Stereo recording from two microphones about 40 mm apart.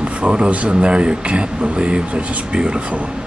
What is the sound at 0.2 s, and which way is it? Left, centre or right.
Speech, right.